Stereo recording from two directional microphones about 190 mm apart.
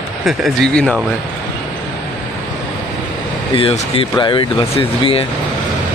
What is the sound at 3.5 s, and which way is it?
Speech, 30° left (ahead or behind).